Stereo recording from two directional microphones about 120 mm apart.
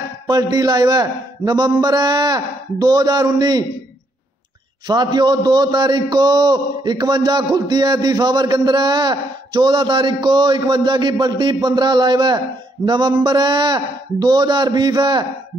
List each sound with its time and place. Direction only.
0.3 s a man's voice: 30° right (ahead or behind)
4.8 s a man's voice: 35° right (ahead or behind)